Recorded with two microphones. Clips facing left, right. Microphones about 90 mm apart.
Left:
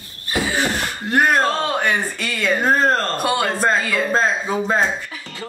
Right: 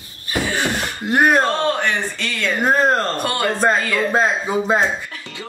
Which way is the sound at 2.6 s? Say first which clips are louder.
Right 2 dB; 15° right (ahead or behind).